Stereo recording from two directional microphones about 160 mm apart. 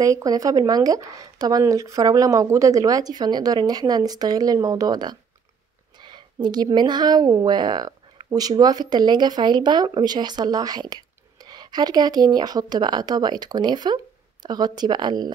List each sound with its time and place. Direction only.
0.0 s speech: 20° right (ahead or behind)